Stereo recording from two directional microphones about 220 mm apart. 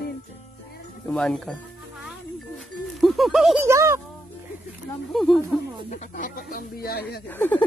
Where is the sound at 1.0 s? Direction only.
Centre (ahead or behind).